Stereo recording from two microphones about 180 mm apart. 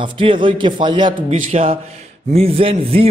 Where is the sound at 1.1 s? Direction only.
45° right (ahead or behind).